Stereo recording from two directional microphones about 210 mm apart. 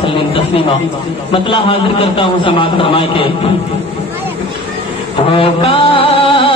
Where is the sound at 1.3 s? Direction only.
25° left (ahead or behind).